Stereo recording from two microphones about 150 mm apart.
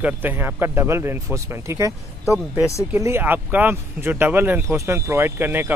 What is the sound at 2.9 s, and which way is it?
Speech, 15° right (ahead or behind).